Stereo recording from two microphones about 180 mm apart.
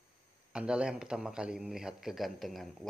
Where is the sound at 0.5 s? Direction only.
5° right (ahead or behind).